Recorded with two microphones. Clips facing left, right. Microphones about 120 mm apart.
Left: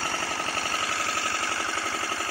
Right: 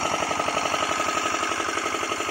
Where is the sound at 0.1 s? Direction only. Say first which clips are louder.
Right 6 dB; 65° right (ahead or behind).